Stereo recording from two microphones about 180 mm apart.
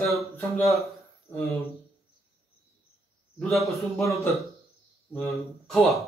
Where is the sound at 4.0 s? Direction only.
15° left (ahead or behind).